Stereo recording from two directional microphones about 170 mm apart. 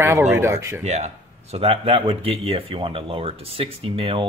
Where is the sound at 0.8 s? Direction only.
40° right (ahead or behind).